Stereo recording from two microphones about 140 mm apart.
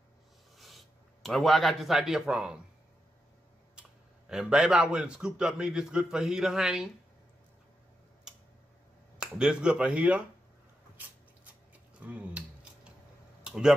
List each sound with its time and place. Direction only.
0.6 s speech: centre (ahead or behind)
4.3 s a man's voice: 5° right (ahead or behind)
9.2 s speech: 5° right (ahead or behind)
11.7 s a sound: 10° right (ahead or behind)